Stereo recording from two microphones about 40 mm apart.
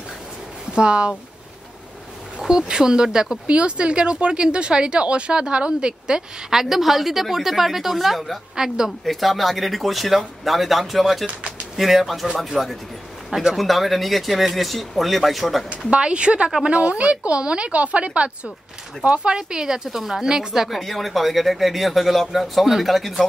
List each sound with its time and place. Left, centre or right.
0.7 s speech: right
2.3 s speech: centre
3.4 s speech: right
6.5 s speech: centre
8.5 s speech: centre
9.0 s speech: centre
15.9 s speech: right; by 23.2 s centre